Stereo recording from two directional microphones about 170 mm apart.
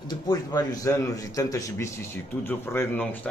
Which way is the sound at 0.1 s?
25° left (ahead or behind).